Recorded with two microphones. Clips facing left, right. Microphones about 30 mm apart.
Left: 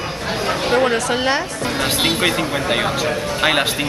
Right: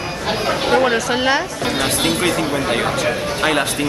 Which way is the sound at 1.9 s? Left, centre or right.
Centre.